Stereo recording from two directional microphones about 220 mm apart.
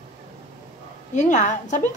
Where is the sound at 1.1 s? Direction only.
35° left (ahead or behind).